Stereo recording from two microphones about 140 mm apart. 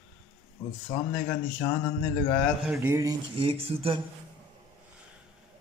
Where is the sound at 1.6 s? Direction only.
20° left (ahead or behind).